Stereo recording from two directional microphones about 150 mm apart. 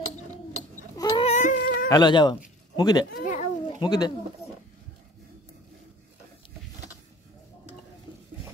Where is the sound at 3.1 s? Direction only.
55° left (ahead or behind).